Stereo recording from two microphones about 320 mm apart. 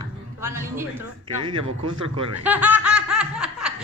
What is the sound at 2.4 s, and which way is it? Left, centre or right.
Laughter, centre.